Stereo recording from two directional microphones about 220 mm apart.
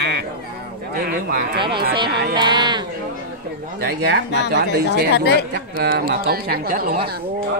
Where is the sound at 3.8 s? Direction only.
50° right (ahead or behind).